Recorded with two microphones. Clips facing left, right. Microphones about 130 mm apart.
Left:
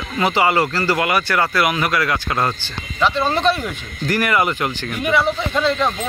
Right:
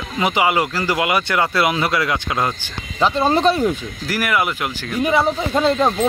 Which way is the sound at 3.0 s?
35° right (ahead or behind).